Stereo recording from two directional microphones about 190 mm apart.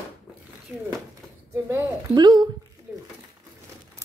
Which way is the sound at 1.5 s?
15° right (ahead or behind).